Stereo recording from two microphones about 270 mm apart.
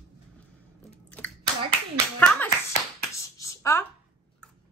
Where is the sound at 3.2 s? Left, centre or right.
Centre.